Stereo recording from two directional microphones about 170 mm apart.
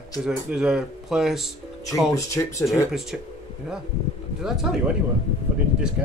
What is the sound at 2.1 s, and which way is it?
Speech, 20° left (ahead or behind).